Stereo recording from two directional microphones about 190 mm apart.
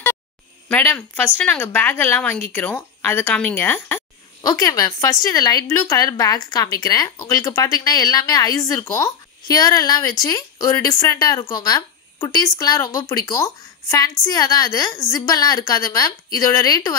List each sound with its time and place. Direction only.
0.7 s speech: 10° left (ahead or behind)